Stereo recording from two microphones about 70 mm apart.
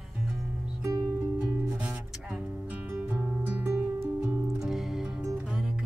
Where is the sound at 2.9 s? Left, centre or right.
Right.